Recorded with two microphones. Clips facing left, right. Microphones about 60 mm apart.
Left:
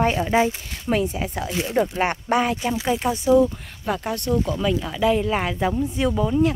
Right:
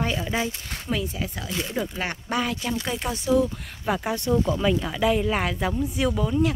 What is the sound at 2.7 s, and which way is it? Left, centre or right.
Speech, centre.